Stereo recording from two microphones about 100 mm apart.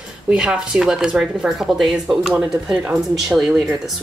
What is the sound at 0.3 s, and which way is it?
Speech, 10° right (ahead or behind).